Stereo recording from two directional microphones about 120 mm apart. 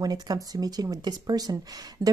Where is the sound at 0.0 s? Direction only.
35° right (ahead or behind).